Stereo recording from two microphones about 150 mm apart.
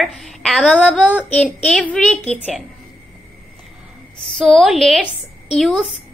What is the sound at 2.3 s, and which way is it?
Speech, 5° right (ahead or behind).